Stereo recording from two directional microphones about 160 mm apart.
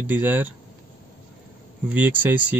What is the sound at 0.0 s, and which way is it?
Speech, 10° right (ahead or behind).